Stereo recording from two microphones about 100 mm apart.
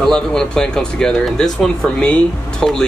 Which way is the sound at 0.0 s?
5° left (ahead or behind).